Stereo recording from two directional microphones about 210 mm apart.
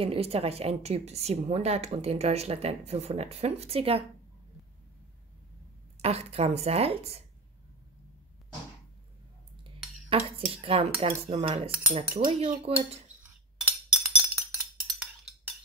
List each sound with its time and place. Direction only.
0.0 s a woman's voice: 30° right (ahead or behind)
5.9 s a woman's voice: 30° right (ahead or behind)
10.0 s a woman's voice: 30° right (ahead or behind)
13.2 s chink: 10° right (ahead or behind)